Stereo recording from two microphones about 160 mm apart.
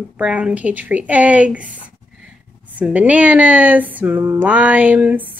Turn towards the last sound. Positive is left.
turn(degrees=-10)  # may be behind; listen again after turning